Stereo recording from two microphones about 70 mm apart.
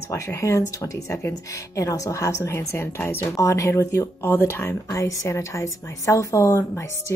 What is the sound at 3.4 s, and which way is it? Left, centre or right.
A woman's voice, left.